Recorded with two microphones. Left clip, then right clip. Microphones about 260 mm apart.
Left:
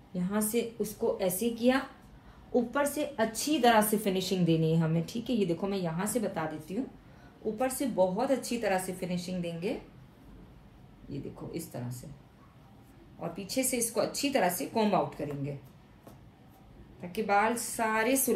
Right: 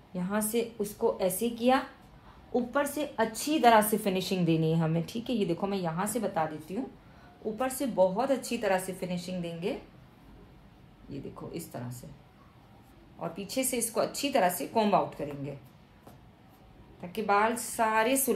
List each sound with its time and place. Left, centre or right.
0.1 s a woman's voice: right
7.8 s a woman's voice: centre
11.1 s a woman's voice: centre
13.2 s a woman's voice: centre
17.1 s a woman's voice: centre